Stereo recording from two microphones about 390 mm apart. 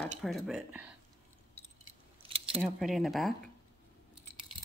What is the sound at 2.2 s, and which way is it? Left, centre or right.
Keys jangling, centre.